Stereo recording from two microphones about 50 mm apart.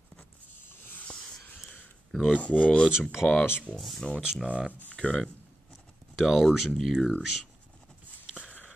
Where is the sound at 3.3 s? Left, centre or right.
Left.